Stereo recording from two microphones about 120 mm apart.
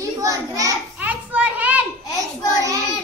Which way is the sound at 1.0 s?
10° right (ahead or behind).